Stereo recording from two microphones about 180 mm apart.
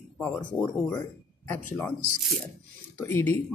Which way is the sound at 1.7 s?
5° left (ahead or behind).